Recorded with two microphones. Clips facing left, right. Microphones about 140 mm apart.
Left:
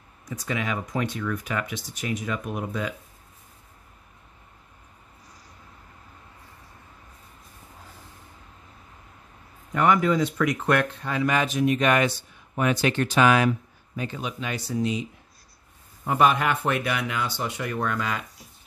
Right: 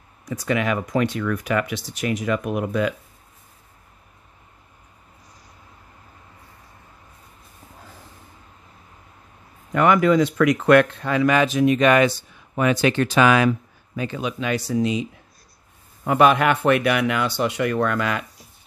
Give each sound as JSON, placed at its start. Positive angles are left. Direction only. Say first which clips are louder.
{"t": 0.3, "sound": "speech", "louder": "right 7 dB", "side_deg": -70}
{"t": 9.7, "sound": "speech", "louder": "right 4 dB", "side_deg": -90}
{"t": 16.0, "sound": "speech", "louder": "right 5 dB", "side_deg": -80}